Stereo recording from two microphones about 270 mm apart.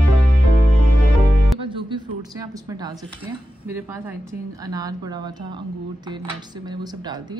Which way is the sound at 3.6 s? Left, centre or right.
Centre.